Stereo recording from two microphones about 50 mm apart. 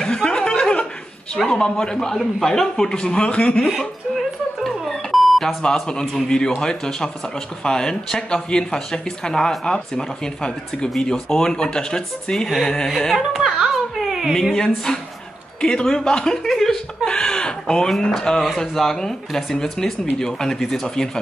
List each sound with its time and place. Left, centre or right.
0.0 s chuckle: centre
1.4 s speech: centre
4.6 s alarm clock: centre
5.6 s speech: centre
13.1 s a sound: centre
14.5 s speech: centre
16.4 s chuckle: centre
18.4 s speech: centre